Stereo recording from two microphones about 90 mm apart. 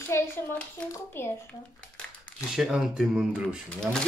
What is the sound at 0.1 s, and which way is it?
A child's voice, 25° left (ahead or behind).